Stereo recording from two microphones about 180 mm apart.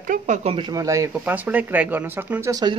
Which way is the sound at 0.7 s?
20° right (ahead or behind).